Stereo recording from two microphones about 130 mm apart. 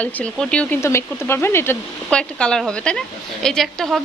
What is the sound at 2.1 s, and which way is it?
A woman's voice, 5° left (ahead or behind).